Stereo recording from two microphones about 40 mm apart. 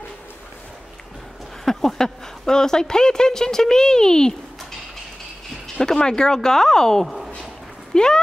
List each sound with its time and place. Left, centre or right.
1.6 s speech: centre
5.8 s speech: centre